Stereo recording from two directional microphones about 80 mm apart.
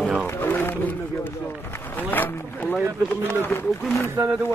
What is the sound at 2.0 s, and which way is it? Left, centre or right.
Speech, left.